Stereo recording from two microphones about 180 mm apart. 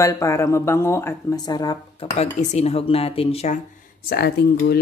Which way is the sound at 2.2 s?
35° left (ahead or behind).